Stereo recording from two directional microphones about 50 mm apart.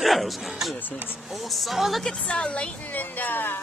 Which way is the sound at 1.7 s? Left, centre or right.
Centre.